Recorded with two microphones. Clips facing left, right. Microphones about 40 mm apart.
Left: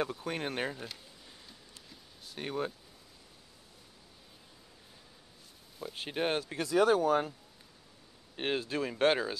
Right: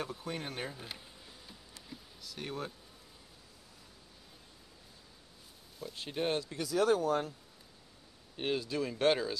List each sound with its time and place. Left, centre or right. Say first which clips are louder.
0.0 s speech: left 5 dB; left
2.2 s a sound: left 3 dB; left
5.9 s speech: left 2 dB; left
6.4 s speech: left 3 dB; left
6.8 s speech: left 3 dB; centre
8.4 s speech: left 1 dB; left